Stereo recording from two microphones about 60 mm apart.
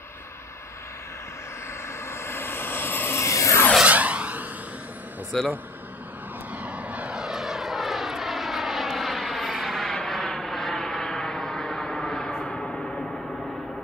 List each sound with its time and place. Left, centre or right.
2.0 s vehicle: left
3.2 s aircraft: left
3.8 s a sound: right
5.3 s speech: centre
6.5 s vehicle: right
7.2 s vehicle: centre